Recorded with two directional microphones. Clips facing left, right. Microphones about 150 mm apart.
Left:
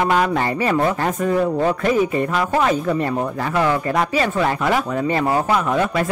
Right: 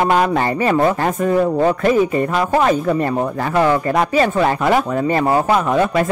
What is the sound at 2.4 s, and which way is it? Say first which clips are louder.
Speech: right 4 dB; 40° right (ahead or behind).